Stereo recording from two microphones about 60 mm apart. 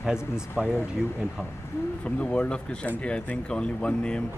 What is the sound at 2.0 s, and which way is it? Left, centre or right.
Speech, centre.